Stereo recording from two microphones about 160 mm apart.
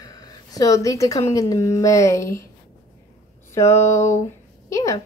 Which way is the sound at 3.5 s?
15° left (ahead or behind).